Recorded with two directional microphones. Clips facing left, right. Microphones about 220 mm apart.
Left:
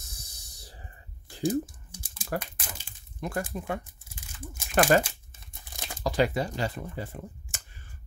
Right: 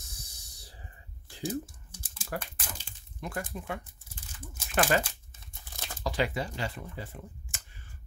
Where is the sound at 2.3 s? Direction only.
45° left (ahead or behind).